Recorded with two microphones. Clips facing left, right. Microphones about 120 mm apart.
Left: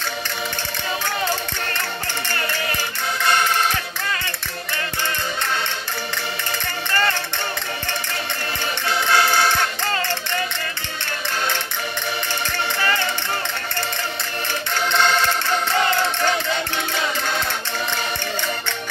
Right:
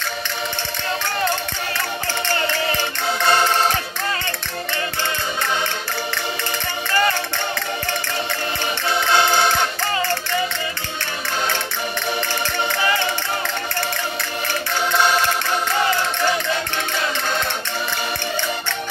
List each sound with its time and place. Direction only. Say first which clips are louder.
3.3 s music: right 2 dB; 30° right (ahead or behind)
8.8 s music: right 1 dB; 25° right (ahead or behind)
14.9 s music: right 1 dB; 10° right (ahead or behind)